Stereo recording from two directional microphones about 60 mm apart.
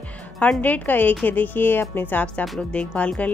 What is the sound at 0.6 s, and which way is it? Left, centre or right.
A woman's voice, left.